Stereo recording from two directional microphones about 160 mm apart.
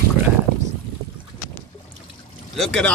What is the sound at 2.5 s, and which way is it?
Speech, 5° left (ahead or behind).